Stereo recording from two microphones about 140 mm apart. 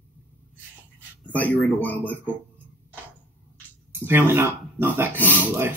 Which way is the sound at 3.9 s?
15° right (ahead or behind).